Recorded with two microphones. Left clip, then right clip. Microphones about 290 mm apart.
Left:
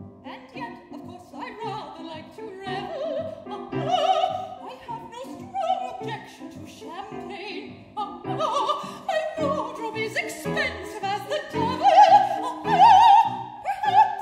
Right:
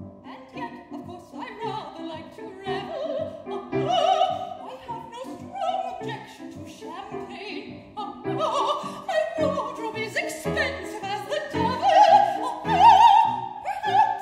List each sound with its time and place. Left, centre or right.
1.4 s music: centre
2.6 s opera: centre
5.5 s opera: centre
7.0 s opera: left
13.7 s music: left